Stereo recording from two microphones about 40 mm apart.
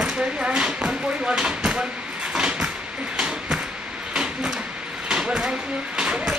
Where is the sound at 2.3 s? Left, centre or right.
Right.